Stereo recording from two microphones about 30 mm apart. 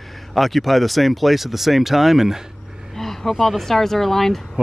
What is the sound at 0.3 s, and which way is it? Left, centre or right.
Speech, centre.